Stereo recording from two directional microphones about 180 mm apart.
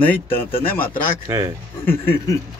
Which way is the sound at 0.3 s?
30° left (ahead or behind).